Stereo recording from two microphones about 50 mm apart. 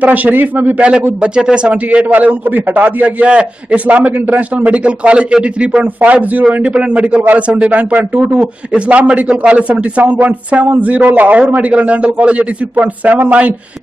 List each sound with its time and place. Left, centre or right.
0.0 s a man's voice: right
1.2 s a man's voice: centre